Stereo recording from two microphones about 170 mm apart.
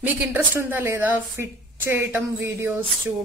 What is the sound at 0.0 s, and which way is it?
Speech, 10° right (ahead or behind).